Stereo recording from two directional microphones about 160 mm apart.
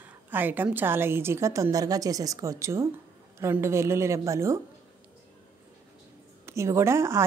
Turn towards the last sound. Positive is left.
turn(degrees=-15)  # may be behind; listen again after turning